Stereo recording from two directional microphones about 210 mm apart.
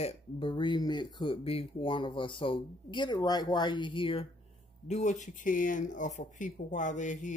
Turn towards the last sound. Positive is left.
turn(degrees=35)  # may be behind; listen again after turning